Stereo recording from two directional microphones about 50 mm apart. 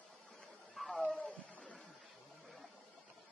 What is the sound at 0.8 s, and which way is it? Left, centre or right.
Cat, centre.